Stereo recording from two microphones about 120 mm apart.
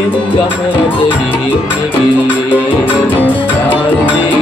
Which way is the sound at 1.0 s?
20° left (ahead or behind).